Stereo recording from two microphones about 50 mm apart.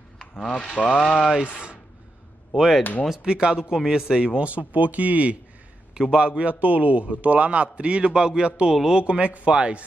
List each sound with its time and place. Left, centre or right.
0.7 s speech: left
1.0 s speech: centre
1.3 s a man's voice: centre
2.5 s speech: centre
2.8 s speech: left
3.1 s speech: centre
4.4 s a man's voice: right